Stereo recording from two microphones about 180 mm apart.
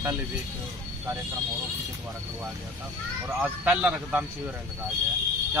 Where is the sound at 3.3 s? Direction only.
10° right (ahead or behind).